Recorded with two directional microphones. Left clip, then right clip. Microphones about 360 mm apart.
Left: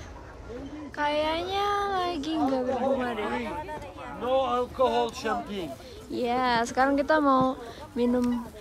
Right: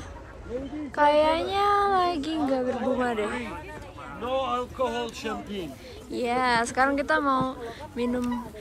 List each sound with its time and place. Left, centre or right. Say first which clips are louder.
0.9 s speech: right 6 dB; centre
2.7 s speech: even; left
5.0 s speech: left 4 dB; centre